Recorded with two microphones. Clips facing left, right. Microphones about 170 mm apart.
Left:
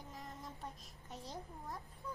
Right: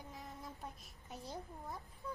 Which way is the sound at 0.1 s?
Centre (ahead or behind).